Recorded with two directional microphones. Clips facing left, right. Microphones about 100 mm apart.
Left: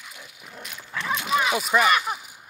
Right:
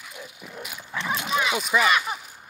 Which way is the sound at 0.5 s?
10° right (ahead or behind).